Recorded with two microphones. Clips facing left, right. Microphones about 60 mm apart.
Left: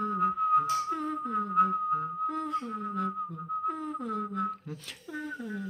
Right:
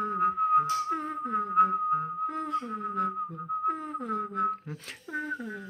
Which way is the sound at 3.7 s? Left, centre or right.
Right.